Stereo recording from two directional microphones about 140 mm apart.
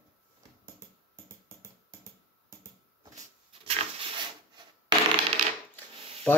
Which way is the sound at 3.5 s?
45° right (ahead or behind).